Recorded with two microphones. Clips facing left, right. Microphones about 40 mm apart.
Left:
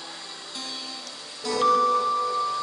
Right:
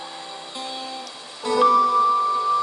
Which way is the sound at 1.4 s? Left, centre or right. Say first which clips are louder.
Right 4 dB; right.